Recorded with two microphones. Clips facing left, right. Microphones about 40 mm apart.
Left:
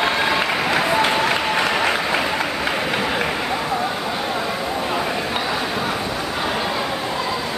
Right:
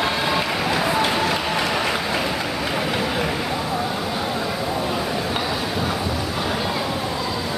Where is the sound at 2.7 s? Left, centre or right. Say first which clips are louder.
Left 1 dB; centre.